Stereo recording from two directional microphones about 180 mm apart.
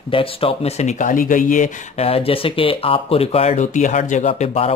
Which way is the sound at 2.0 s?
30° left (ahead or behind).